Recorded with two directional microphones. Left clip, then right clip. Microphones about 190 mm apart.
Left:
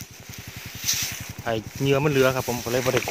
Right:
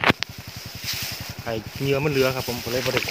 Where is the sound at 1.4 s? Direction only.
20° left (ahead or behind).